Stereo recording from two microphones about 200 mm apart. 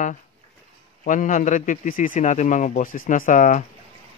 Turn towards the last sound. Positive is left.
turn(degrees=40)  # may be behind; listen again after turning